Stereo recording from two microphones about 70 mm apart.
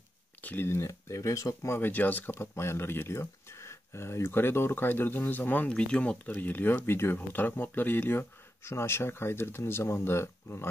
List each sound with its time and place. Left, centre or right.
0.4 s a sound: left
0.7 s speech: left
1.8 s speech: left
5.7 s speech: centre; by 10.7 s left